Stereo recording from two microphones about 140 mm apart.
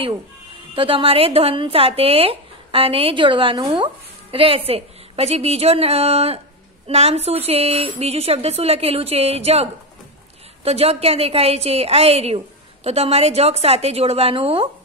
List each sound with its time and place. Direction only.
0.7 s speech: 40° right (ahead or behind)